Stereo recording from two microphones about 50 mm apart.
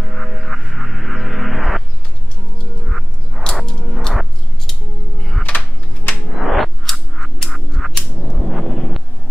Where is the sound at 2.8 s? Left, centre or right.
Centre.